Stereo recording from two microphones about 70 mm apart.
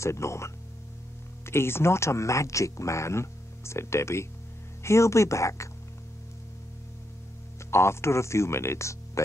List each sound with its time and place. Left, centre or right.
0.0 s speech: left
7.7 s speech: left